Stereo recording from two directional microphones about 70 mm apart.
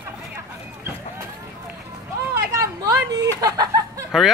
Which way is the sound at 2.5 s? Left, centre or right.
Right.